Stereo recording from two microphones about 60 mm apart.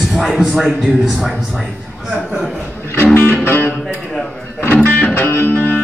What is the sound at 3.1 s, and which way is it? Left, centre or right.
Music, left.